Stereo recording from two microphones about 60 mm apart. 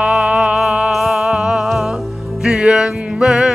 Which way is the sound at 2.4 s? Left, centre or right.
Centre.